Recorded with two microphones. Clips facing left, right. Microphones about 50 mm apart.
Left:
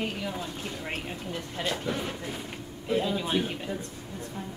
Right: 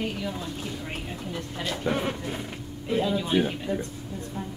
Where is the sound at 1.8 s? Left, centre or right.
Right.